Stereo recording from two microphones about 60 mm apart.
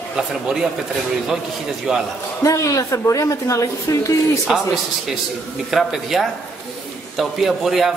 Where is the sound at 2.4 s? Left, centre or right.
Left.